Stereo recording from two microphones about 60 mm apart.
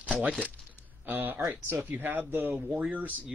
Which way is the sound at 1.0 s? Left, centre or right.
Right.